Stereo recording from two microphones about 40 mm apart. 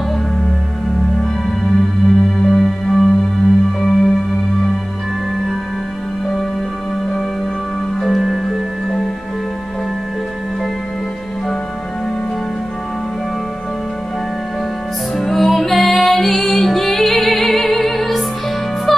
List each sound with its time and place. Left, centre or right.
2.3 s music: centre
8.0 s music: centre
15.1 s music: centre